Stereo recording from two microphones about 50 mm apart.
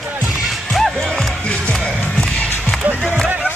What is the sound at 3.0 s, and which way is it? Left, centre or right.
Music, centre.